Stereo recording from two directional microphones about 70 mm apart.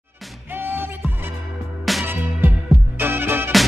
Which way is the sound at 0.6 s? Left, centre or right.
Right.